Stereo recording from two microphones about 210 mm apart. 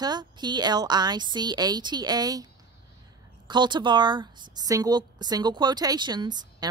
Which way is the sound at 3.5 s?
20° right (ahead or behind).